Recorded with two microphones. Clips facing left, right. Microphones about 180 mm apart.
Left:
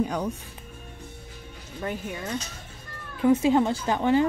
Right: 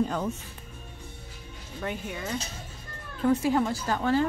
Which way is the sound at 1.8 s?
Centre (ahead or behind).